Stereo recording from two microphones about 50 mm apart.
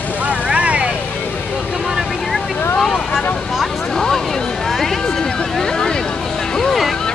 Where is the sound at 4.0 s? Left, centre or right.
Centre.